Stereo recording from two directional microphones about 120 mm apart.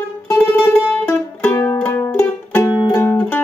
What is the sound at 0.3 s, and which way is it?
Music, 15° left (ahead or behind).